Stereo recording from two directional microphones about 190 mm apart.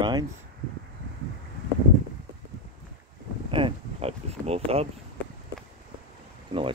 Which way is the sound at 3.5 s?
25° right (ahead or behind).